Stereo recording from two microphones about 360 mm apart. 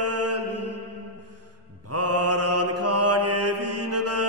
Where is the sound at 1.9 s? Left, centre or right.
Right.